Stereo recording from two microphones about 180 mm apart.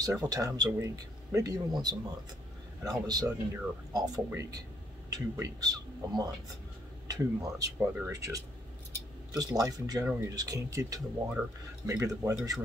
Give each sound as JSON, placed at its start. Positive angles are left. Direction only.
{"t": 0.0, "sound": "speech", "side_deg": -20}
{"t": 3.1, "sound": "speech", "side_deg": -20}